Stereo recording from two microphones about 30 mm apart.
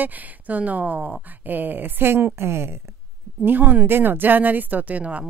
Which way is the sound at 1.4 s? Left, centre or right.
Right.